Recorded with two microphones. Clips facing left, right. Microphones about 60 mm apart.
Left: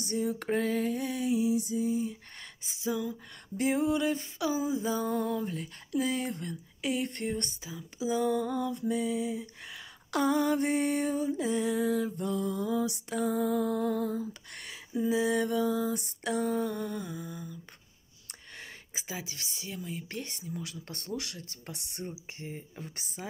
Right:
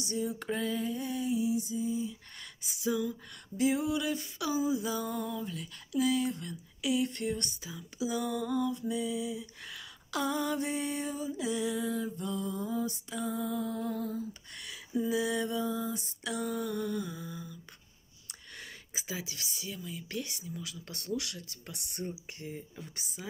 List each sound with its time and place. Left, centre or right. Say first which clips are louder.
0.0 s a sound: left 3 dB; left
2.6 s speech: right 1 dB; left
3.5 s speech: left 2 dB; left
5.2 s speech: left 5 dB; left
10.1 s mantra: left 5 dB; left
13.1 s music: left 7 dB; left
14.5 s speech: left 1 dB; left
15.0 s speech: left 3 dB; left
15.6 s speech: left 5 dB; left
18.9 s speech: even; left